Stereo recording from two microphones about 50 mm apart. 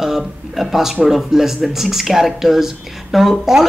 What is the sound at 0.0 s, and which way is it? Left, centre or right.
Speech, centre.